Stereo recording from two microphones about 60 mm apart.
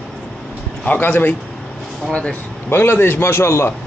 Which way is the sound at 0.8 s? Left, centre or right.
Left.